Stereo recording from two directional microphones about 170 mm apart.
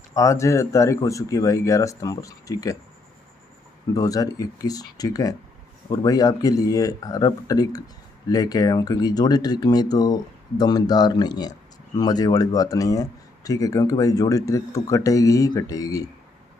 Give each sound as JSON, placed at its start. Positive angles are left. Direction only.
{"t": 0.1, "sound": "speech", "side_deg": 20}
{"t": 3.9, "sound": "speech", "side_deg": 20}